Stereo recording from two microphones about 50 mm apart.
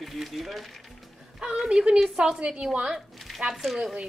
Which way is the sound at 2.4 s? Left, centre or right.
Centre.